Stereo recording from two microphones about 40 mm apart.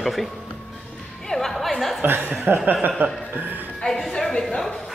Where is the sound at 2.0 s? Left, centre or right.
Right.